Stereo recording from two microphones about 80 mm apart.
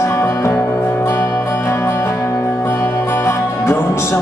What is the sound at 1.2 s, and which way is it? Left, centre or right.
Music, left.